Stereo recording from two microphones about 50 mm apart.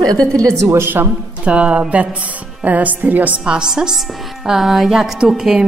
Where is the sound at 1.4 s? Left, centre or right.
Right.